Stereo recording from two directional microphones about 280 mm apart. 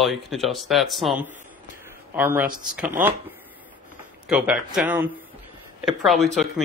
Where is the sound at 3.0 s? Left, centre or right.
Centre.